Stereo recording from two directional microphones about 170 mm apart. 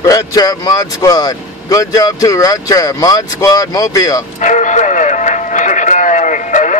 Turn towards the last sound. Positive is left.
turn(degrees=45)  # may be behind; listen again after turning